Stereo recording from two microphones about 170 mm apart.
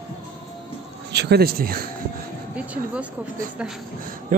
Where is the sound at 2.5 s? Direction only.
10° right (ahead or behind).